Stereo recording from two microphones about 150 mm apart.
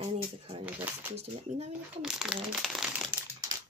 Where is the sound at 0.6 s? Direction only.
10° right (ahead or behind).